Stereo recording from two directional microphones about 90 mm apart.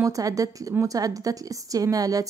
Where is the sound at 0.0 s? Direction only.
40° right (ahead or behind).